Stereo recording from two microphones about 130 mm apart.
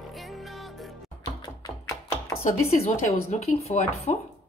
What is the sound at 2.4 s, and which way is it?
Speech, 60° left (ahead or behind).